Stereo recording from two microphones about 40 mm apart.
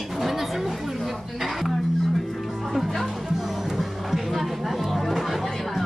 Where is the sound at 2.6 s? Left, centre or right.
Centre.